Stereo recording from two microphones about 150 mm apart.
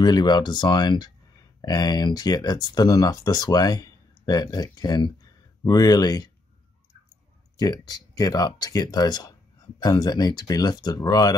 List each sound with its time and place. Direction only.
0.0 s speech: 30° left (ahead or behind)
7.5 s speech: 25° left (ahead or behind)